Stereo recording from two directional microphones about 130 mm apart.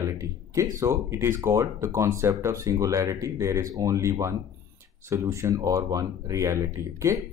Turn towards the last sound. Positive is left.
turn(degrees=-25)  # may be behind; listen again after turning